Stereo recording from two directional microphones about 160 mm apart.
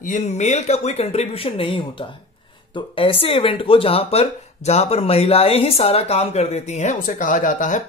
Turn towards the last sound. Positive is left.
turn(degrees=55)  # may be behind; listen again after turning